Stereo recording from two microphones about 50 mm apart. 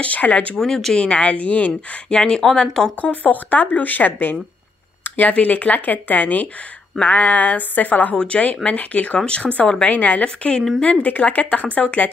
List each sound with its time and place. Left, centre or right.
0.0 s speech: left
0.6 s speech: centre
0.9 s speech: left
3.0 s speech: left
5.0 s a sound: left
5.3 s speech: left
9.8 s speech: left